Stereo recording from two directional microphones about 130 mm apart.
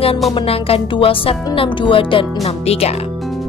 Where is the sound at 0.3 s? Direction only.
45° left (ahead or behind).